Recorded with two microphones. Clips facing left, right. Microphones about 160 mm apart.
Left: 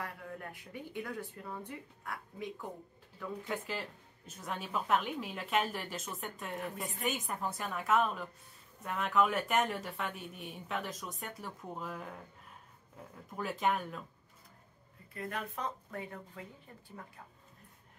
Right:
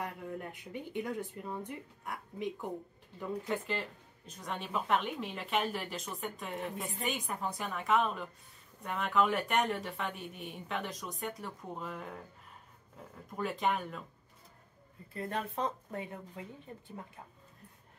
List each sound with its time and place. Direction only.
0.0 s speech: 20° right (ahead or behind)
3.4 s speech: centre (ahead or behind)
13.4 s speech: centre (ahead or behind)
15.1 s speech: 30° right (ahead or behind)